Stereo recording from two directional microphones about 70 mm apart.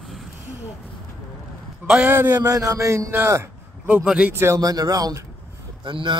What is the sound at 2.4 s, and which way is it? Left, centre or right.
Speech, right.